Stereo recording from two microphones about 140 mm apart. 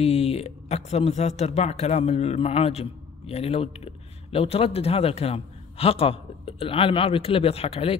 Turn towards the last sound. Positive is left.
turn(degrees=45)  # may be behind; listen again after turning